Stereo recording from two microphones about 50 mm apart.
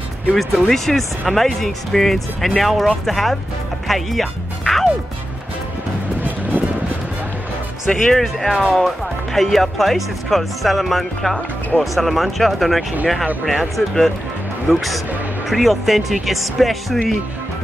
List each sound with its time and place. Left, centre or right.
0.4 s speech: centre
6.5 s music: right
8.1 s speech: centre